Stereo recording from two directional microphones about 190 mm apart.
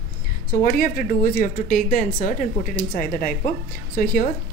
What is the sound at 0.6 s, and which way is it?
Speech, 45° left (ahead or behind).